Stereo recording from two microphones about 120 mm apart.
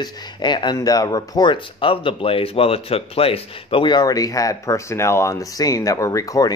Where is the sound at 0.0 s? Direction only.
40° left (ahead or behind).